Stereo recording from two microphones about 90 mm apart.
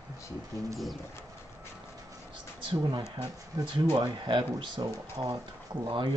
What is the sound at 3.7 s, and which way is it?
Speech, 55° right (ahead or behind).